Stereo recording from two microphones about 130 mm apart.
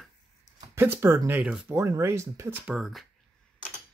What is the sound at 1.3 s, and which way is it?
Speech, 10° right (ahead or behind).